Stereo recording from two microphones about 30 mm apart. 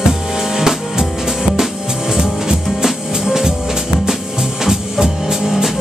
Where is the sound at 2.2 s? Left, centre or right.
Centre.